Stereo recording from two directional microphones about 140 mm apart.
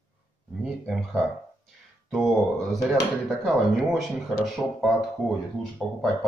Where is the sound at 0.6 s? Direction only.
Centre (ahead or behind).